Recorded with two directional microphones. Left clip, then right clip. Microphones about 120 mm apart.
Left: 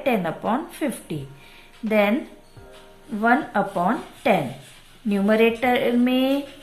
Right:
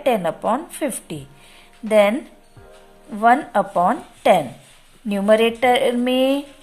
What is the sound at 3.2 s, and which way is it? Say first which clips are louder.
Speech: right 5 dB; 50° right (ahead or behind).